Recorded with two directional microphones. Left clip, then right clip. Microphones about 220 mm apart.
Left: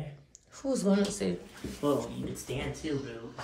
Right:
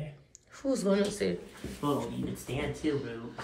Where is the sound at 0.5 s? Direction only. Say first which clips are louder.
Right 1 dB; 20° left (ahead or behind).